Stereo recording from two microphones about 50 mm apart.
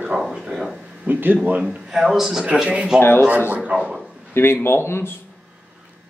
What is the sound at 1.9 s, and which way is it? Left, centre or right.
Speech, centre.